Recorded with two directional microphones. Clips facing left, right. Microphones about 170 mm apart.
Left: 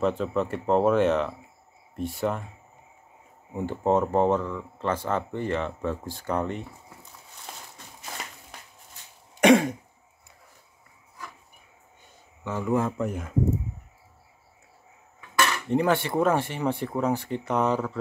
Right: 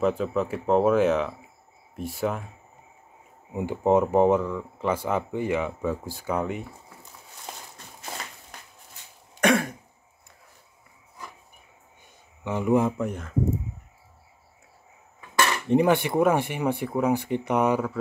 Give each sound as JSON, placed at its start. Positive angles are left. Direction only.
{"t": 0.0, "sound": "speech", "side_deg": -5}
{"t": 3.5, "sound": "speech", "side_deg": -10}
{"t": 9.4, "sound": "throat clearing", "side_deg": 15}
{"t": 12.4, "sound": "speech", "side_deg": -15}
{"t": 12.9, "sound": "speech", "side_deg": 0}
{"t": 15.7, "sound": "speech", "side_deg": -15}